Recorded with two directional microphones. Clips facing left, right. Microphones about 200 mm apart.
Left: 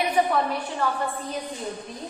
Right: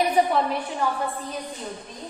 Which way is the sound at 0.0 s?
30° right (ahead or behind).